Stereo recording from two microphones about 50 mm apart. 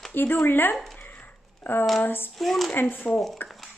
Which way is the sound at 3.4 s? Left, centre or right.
Centre.